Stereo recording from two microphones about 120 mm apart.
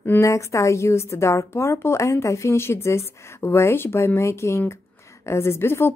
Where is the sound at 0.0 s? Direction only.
20° left (ahead or behind).